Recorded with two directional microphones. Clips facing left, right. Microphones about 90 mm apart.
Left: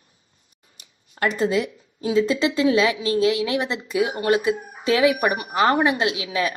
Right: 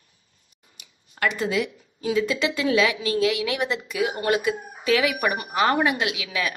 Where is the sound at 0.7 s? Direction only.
35° left (ahead or behind).